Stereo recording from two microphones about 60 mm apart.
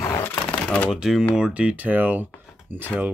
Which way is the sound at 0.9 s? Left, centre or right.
Centre.